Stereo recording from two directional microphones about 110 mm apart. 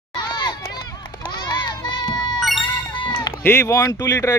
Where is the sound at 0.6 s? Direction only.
35° left (ahead or behind).